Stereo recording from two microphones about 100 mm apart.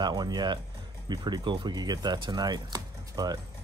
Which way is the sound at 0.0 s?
45° right (ahead or behind).